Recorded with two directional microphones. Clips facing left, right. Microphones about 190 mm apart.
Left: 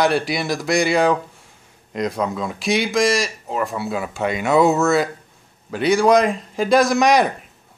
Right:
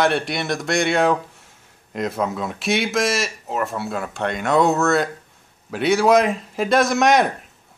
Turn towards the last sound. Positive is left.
turn(degrees=0)  # may be behind; listen again after turning